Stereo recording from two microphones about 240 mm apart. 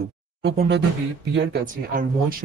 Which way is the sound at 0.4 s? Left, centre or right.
Right.